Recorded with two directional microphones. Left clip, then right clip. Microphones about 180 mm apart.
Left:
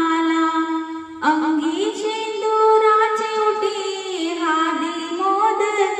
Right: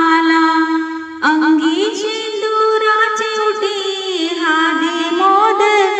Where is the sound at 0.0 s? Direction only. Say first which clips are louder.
Right 7 dB; 30° right (ahead or behind).